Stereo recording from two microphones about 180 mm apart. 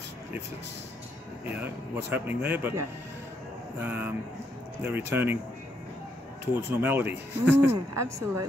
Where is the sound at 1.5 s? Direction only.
10° right (ahead or behind).